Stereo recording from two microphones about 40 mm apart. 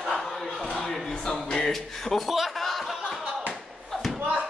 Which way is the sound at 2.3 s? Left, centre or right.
Centre.